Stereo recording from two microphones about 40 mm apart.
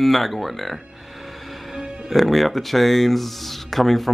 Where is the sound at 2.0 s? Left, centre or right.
Centre.